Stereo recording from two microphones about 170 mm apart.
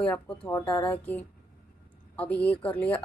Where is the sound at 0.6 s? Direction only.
30° left (ahead or behind).